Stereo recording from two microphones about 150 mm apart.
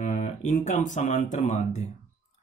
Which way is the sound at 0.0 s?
55° left (ahead or behind).